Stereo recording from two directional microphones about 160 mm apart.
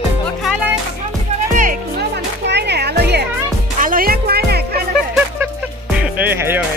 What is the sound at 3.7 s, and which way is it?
Music, 60° right (ahead or behind).